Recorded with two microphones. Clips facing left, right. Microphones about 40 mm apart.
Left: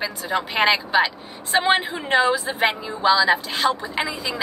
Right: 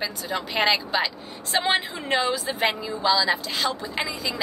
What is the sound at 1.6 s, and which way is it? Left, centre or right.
Speech, left.